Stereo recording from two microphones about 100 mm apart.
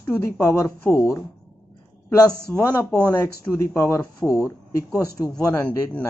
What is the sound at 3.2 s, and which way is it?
Speech, 25° left (ahead or behind).